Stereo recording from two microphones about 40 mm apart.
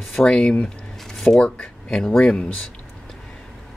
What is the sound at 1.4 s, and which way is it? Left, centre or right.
Speech, left.